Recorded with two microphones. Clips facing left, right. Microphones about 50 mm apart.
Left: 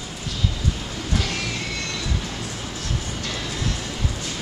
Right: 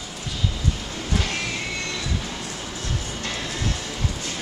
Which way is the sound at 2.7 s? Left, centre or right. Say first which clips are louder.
Left 1 dB; right.